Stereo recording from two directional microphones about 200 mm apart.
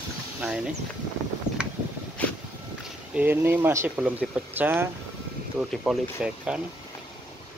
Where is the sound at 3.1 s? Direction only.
10° right (ahead or behind).